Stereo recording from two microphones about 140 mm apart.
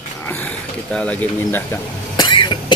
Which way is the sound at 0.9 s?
10° left (ahead or behind).